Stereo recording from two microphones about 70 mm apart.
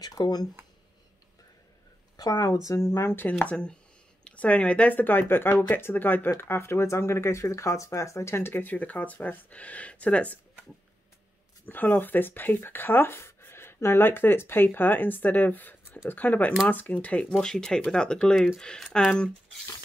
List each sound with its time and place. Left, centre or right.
0.0 s speech: left
2.1 s speech: left
3.4 s speech: centre
11.6 s speech: left